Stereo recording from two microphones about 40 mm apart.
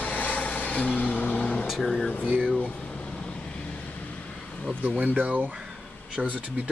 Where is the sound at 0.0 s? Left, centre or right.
Left.